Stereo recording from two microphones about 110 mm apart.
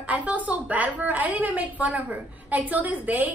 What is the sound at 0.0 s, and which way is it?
A woman's voice, 15° right (ahead or behind).